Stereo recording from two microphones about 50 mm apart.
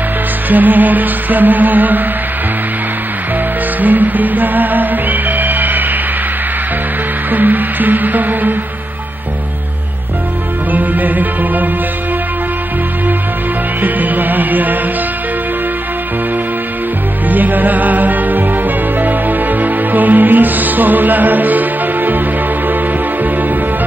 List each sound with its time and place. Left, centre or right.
0.5 s music: right
3.8 s music: right
7.2 s music: right
10.7 s music: right
13.7 s music: right
17.3 s music: right